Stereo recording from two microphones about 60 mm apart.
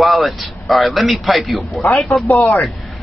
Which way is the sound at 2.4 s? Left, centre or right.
Centre.